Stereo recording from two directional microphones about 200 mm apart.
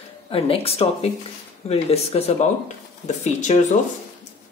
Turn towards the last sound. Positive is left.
turn(degrees=35)  # may be behind; listen again after turning